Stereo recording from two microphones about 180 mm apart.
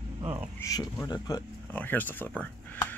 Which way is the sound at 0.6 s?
20° left (ahead or behind).